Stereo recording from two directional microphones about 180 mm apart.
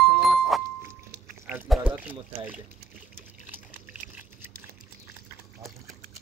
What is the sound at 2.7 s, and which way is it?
Trickle, 40° left (ahead or behind).